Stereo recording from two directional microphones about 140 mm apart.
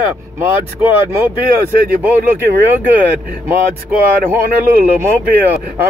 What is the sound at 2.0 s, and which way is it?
Speech, 15° right (ahead or behind).